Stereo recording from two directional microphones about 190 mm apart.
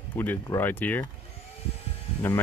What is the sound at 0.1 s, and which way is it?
Speech, 10° left (ahead or behind).